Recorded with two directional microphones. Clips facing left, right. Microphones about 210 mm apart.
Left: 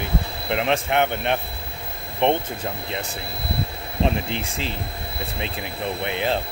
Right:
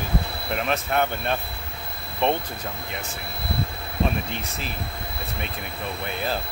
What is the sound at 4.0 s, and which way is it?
Speech, 30° left (ahead or behind).